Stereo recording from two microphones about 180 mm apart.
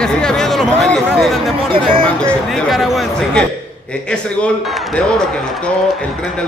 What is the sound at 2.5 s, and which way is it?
Speech, centre (ahead or behind).